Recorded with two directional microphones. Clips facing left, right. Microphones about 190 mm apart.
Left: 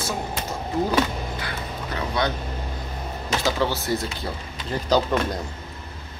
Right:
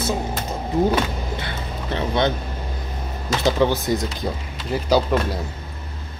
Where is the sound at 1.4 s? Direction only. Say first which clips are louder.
Right 1 dB; 25° right (ahead or behind).